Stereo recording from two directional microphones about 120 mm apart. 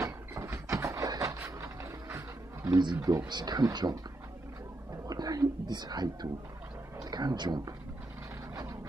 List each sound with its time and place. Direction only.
0.0 s a sound: 25° right (ahead or behind)
2.8 s speech: 35° right (ahead or behind)
5.0 s speech: 30° right (ahead or behind)
7.1 s speech: 35° right (ahead or behind)